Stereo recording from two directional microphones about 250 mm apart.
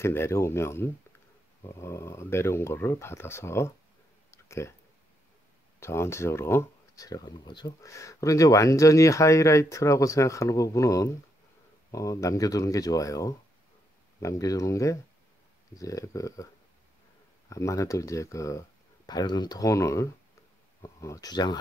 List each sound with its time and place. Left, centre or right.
0.0 s speech: centre
4.3 s a sound: centre
5.8 s speech: centre
17.5 s speech: centre